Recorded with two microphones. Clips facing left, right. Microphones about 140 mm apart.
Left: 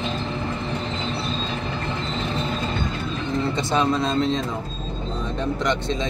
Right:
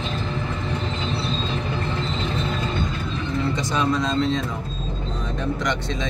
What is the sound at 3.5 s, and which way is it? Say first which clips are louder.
Speech: left 3 dB; 30° left (ahead or behind).